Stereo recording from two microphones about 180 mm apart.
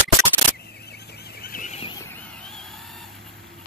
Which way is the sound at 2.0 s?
10° left (ahead or behind).